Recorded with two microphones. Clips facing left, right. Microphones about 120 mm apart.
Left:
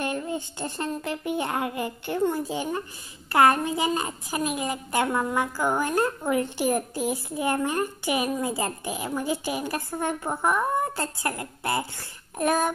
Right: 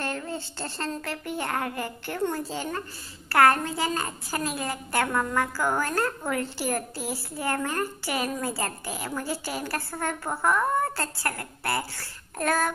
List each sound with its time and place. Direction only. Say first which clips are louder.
0.0 s a woman's voice: left 3 dB; 15° left (ahead or behind)